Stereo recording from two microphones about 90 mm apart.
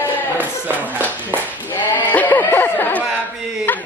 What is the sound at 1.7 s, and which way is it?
A woman's voice, 20° left (ahead or behind).